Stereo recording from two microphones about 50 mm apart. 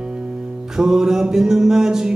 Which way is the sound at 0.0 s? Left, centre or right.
Centre.